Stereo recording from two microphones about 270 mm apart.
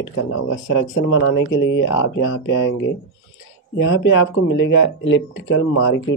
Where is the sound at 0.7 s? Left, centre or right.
Left.